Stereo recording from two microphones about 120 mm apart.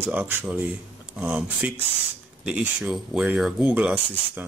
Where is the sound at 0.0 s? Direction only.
20° right (ahead or behind).